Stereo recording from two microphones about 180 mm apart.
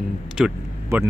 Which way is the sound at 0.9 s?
15° right (ahead or behind).